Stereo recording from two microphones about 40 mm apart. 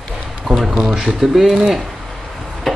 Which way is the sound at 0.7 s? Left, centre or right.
Right.